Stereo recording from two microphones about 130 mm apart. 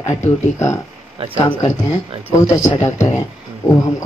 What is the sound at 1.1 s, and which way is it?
Speech, 45° right (ahead or behind).